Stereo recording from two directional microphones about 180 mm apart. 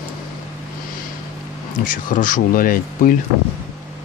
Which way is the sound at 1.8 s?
45° left (ahead or behind).